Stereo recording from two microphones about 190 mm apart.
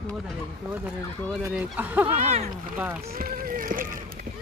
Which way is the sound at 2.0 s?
35° right (ahead or behind).